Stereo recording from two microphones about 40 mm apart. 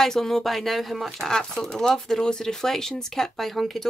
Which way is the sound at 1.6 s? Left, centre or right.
Centre.